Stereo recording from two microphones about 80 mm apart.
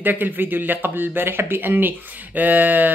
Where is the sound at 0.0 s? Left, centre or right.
Right.